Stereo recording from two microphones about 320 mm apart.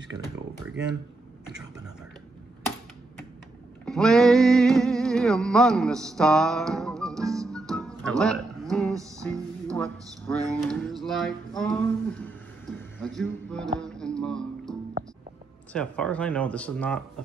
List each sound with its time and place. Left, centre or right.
3.8 s music: centre
15.7 s speech: centre